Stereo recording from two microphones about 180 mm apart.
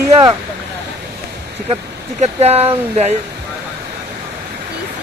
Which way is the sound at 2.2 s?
35° right (ahead or behind).